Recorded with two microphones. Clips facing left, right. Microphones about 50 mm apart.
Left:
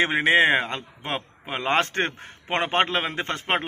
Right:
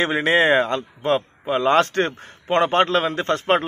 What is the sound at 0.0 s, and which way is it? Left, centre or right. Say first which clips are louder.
A man's voice: right 1 dB; left.